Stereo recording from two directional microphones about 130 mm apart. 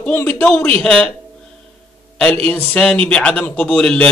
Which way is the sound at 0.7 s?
5° left (ahead or behind).